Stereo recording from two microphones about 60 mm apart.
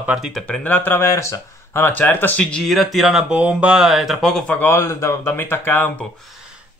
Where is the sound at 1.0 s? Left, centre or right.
Left.